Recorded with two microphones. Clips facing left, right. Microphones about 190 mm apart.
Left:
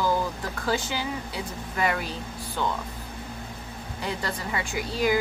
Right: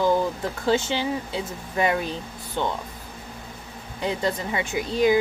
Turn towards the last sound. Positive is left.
turn(degrees=-20)  # may be behind; listen again after turning